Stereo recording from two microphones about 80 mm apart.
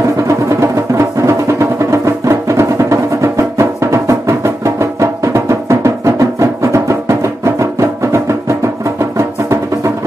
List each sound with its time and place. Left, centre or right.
0.3 s music: right